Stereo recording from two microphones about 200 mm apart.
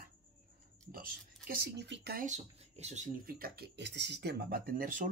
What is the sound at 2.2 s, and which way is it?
Speech, 35° right (ahead or behind).